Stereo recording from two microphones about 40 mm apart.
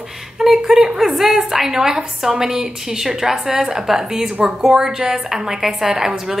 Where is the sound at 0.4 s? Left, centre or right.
Centre.